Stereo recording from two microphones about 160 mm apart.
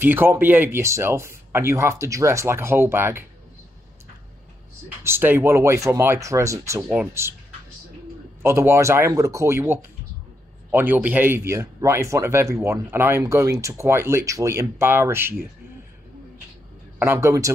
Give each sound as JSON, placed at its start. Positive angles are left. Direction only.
{"t": 0.0, "sound": "speech", "side_deg": -15}
{"t": 5.0, "sound": "speech", "side_deg": -15}
{"t": 8.4, "sound": "speech", "side_deg": -15}
{"t": 17.0, "sound": "speech", "side_deg": -15}